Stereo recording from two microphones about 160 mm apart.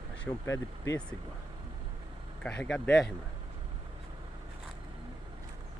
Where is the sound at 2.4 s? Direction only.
5° left (ahead or behind).